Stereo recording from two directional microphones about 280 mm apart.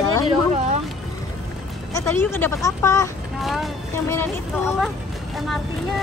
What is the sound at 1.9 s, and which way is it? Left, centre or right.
Speech, centre.